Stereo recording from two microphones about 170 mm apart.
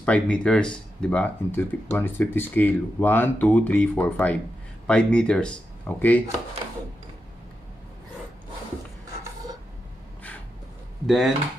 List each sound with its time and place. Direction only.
0.0 s speech: 5° left (ahead or behind)
11.1 s speech: centre (ahead or behind)